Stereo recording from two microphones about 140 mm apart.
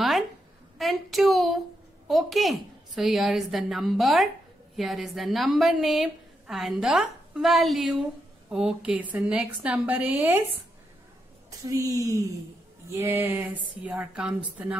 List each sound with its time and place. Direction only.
0.7 s a woman's voice: centre (ahead or behind)
11.6 s a woman's voice: 25° right (ahead or behind); by 14.8 s 10° right (ahead or behind)